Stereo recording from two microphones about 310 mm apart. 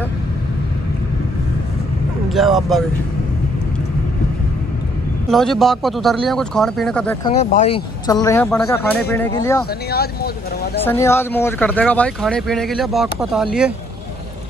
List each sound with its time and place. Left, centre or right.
2.2 s speech: centre
5.3 s speech: centre
7.2 s speech: centre
9.8 s speech: left
10.8 s speech: centre